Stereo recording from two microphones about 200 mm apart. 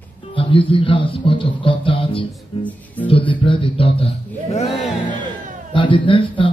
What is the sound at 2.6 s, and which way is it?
Music, 10° left (ahead or behind).